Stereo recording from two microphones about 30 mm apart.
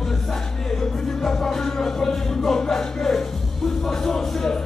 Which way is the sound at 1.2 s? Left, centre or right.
Centre.